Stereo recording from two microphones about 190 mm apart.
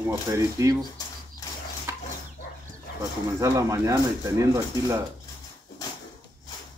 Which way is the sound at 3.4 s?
15° right (ahead or behind).